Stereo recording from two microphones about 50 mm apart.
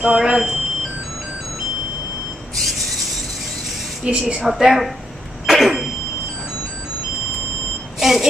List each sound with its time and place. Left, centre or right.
0.0 s speech: centre
2.5 s printer: centre
4.0 s a woman's voice: centre
4.5 s a woman's voice: centre
5.5 s vehicle: centre
8.0 s speech: centre